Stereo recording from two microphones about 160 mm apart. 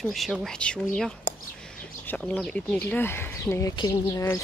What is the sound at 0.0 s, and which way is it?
Speech, centre (ahead or behind).